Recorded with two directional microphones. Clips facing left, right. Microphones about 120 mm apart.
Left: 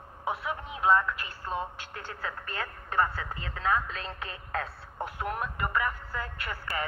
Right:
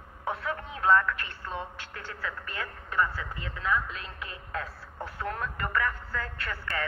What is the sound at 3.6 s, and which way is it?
Speech, 30° left (ahead or behind).